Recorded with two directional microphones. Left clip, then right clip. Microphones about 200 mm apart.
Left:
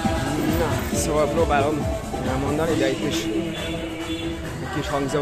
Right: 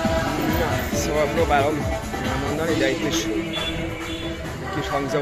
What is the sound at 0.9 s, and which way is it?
Music, 20° left (ahead or behind).